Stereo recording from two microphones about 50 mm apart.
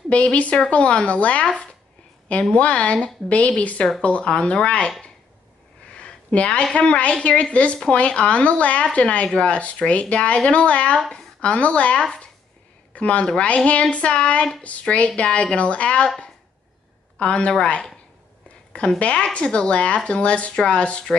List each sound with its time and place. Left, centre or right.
0.1 s speech: left
2.5 s speech: left
5.9 s a sound: left
6.7 s a woman's voice: left
17.2 s a woman's voice: left
18.9 s speech: left